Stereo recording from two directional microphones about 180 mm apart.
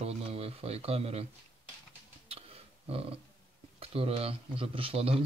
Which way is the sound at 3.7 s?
30° right (ahead or behind).